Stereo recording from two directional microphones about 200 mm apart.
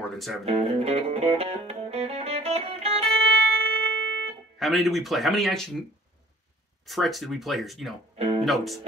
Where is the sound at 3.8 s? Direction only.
10° left (ahead or behind).